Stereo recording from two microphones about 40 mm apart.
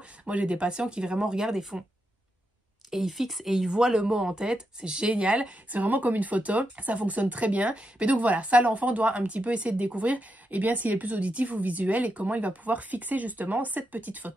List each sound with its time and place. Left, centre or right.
0.2 s speech: right; by 1.9 s centre
2.9 s speech: centre
3.6 s speech: centre
5.7 s speech: right